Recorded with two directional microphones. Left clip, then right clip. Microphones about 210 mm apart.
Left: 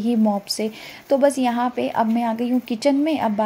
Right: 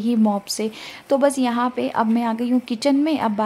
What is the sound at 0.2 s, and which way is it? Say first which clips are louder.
Speech: even; 10° right (ahead or behind).